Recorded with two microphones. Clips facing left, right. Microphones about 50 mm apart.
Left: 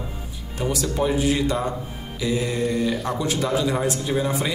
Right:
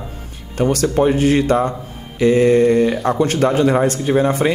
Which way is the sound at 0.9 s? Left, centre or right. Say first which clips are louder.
Right 5 dB; right.